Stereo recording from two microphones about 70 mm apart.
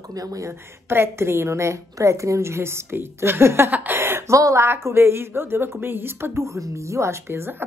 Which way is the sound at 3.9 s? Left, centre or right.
Right.